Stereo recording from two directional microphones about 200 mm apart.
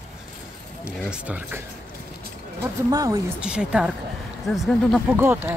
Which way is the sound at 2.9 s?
20° right (ahead or behind).